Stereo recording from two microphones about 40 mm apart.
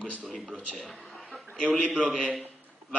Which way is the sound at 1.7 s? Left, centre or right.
Centre.